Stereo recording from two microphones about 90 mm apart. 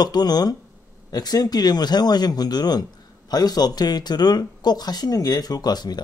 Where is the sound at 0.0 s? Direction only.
50° left (ahead or behind).